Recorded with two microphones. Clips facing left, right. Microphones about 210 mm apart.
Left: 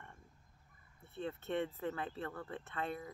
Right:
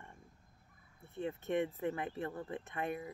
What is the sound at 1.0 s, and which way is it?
Speech, 15° right (ahead or behind).